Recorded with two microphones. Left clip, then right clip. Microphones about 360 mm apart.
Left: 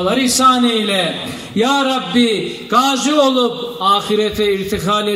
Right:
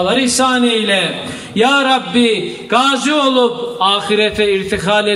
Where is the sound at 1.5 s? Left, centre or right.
Right.